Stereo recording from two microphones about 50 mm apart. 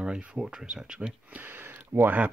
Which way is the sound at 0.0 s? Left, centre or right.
Centre.